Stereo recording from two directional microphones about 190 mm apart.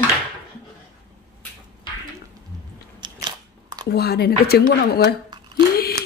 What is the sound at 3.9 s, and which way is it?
Speech, 55° left (ahead or behind).